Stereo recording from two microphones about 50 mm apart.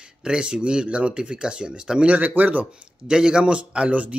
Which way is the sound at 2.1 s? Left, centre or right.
Right.